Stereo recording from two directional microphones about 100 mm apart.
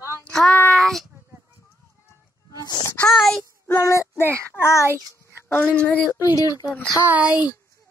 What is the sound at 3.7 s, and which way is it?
Child singing, 30° left (ahead or behind).